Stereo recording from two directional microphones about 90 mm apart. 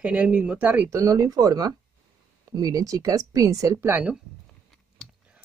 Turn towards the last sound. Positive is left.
turn(degrees=-25)  # may be behind; listen again after turning